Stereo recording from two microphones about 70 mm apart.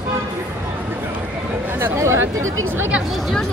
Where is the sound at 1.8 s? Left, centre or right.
Right.